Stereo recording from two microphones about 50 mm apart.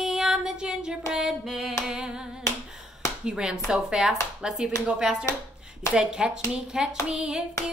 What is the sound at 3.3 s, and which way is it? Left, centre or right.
Child singing, centre.